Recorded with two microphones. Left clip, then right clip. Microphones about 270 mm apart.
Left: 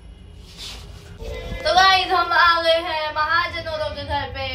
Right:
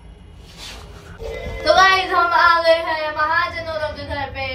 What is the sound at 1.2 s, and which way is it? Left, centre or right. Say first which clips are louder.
Music: right 5 dB; centre.